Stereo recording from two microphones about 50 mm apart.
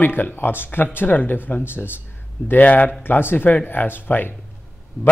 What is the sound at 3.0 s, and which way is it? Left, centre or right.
Speech, left.